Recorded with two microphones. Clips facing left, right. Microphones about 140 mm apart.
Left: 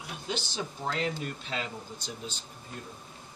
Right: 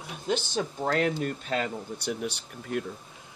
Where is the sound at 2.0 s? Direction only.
65° right (ahead or behind).